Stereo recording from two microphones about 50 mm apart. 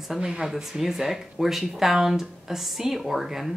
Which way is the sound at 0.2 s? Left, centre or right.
Centre.